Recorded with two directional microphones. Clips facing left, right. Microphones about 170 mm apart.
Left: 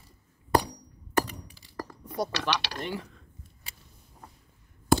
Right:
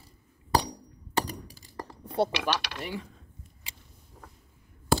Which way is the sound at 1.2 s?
45° right (ahead or behind).